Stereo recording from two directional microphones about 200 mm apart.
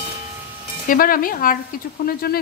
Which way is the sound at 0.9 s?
45° left (ahead or behind).